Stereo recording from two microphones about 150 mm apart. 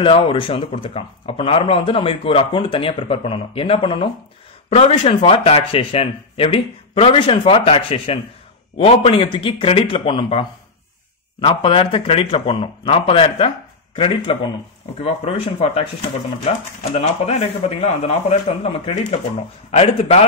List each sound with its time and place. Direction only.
0.0 s a man's voice: 35° left (ahead or behind)
11.4 s a man's voice: 35° left (ahead or behind)